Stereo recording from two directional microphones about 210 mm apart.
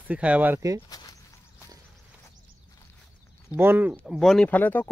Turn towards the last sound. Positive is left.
turn(degrees=10)  # may be behind; listen again after turning